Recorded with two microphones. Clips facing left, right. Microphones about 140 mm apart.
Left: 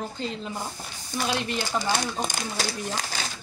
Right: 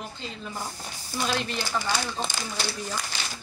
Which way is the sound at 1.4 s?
15° left (ahead or behind).